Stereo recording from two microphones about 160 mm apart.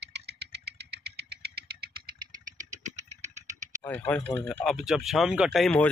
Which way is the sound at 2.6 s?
45° right (ahead or behind).